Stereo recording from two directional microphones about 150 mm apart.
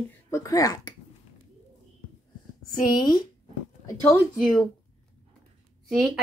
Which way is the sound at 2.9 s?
25° left (ahead or behind).